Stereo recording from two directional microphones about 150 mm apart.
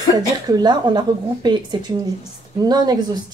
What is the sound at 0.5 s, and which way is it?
Speech, 30° right (ahead or behind).